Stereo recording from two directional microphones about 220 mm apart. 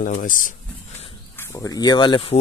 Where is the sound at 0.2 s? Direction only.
35° left (ahead or behind).